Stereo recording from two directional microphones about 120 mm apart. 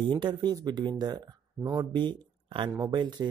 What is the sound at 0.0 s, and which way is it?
Speech, 40° right (ahead or behind).